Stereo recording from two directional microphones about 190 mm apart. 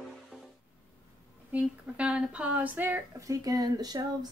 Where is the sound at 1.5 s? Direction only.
5° right (ahead or behind).